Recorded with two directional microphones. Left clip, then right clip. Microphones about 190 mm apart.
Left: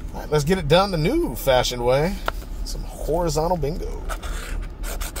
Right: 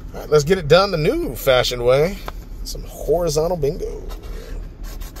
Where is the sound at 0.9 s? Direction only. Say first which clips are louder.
Right 3 dB; 15° right (ahead or behind).